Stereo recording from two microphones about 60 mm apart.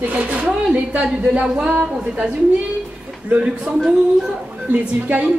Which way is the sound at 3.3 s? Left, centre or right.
Centre.